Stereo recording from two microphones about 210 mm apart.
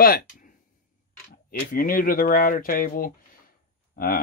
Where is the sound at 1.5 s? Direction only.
45° left (ahead or behind).